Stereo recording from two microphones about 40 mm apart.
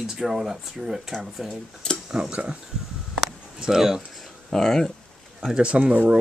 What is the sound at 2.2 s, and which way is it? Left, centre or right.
Speech, centre.